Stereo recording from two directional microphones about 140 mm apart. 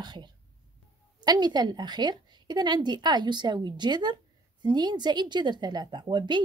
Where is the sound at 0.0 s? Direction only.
30° right (ahead or behind).